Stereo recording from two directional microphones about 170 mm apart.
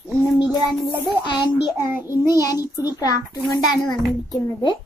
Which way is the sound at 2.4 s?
25° left (ahead or behind).